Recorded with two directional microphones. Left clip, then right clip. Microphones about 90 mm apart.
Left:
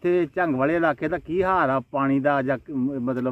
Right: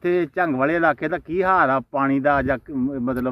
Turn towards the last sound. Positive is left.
turn(degrees=15)  # may be behind; listen again after turning